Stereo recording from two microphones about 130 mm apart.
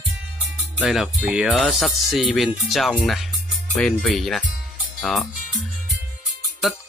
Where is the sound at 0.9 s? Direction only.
5° right (ahead or behind).